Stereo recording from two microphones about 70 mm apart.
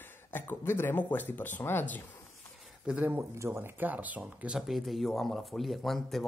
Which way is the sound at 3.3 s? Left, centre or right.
Right.